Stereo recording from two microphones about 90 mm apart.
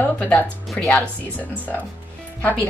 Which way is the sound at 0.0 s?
20° left (ahead or behind).